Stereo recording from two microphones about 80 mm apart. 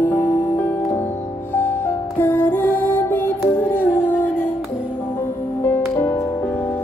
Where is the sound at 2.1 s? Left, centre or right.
Left.